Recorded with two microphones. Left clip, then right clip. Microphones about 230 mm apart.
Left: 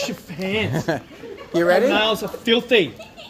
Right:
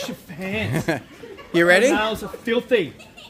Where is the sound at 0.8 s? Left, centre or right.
Right.